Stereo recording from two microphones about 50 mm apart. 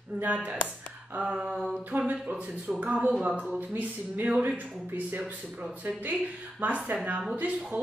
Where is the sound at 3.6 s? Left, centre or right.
Right.